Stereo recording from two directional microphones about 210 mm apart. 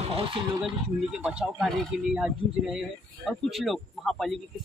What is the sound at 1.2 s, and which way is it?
Speech, 5° right (ahead or behind).